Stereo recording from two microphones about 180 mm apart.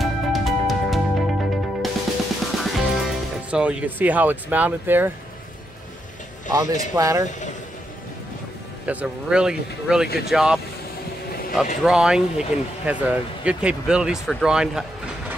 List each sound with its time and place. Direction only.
0.0 s music: centre (ahead or behind)
2.6 s speech: centre (ahead or behind)
6.5 s speech: 15° right (ahead or behind)
8.8 s speech: 5° right (ahead or behind)
10.0 s speech: 60° left (ahead or behind)
10.3 s speech: 5° right (ahead or behind)